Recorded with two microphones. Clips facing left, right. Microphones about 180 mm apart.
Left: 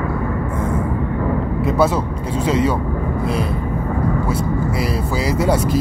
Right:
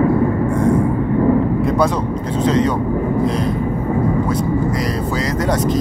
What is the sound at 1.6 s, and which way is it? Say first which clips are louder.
Speech: even; 5° left (ahead or behind).